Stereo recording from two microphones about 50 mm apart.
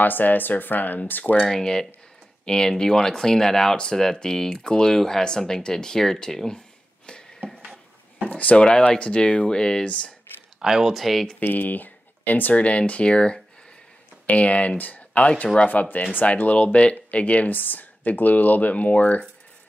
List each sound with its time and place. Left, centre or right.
0.0 s speech: left
1.5 s speech: centre
7.1 s a sound: left
8.3 s a sound: left
8.8 s speech: left
10.6 s speech: centre
11.3 s speech: left